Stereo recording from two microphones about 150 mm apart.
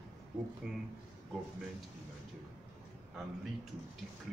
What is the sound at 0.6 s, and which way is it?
Speech, 5° right (ahead or behind).